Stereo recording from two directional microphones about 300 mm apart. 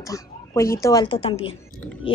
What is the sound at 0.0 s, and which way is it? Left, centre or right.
Speech, centre.